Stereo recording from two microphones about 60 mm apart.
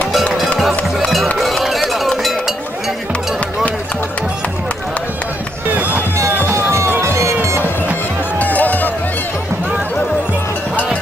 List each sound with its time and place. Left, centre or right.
0.6 s music: centre
1.4 s run: centre
5.8 s music: right
6.3 s music: right
8.4 s music: left